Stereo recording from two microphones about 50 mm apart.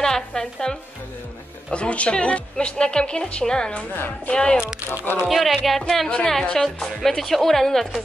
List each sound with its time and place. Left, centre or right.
0.0 s speech: centre
1.7 s a woman's voice: left
5.2 s speech: centre
6.0 s a woman's voice: centre